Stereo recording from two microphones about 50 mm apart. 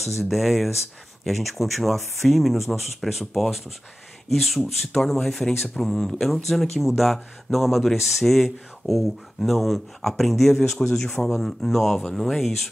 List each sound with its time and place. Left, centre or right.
0.0 s speech: centre